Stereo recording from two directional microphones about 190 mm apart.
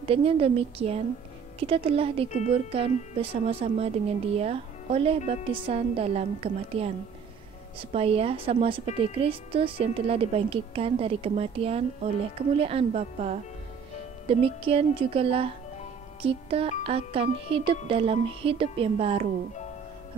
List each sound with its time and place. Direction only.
0.0 s a woman's voice: 30° right (ahead or behind)
7.9 s a woman's voice: 30° right (ahead or behind)
16.2 s music: 30° right (ahead or behind)
16.8 s a woman's voice: 30° right (ahead or behind)